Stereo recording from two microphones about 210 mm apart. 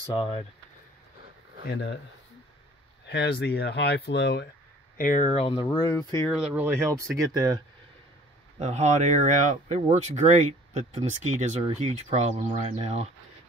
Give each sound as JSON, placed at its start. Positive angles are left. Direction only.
{"t": 0.0, "sound": "speech", "side_deg": 25}
{"t": 1.6, "sound": "speech", "side_deg": 50}
{"t": 3.1, "sound": "speech", "side_deg": 55}
{"t": 4.9, "sound": "speech", "side_deg": 40}
{"t": 5.7, "sound": "speech", "side_deg": 20}
{"t": 6.3, "sound": "speech", "side_deg": -5}
{"t": 8.5, "sound": "speech", "side_deg": -30}